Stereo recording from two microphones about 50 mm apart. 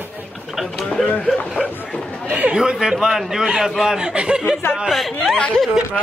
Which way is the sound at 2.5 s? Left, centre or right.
Centre.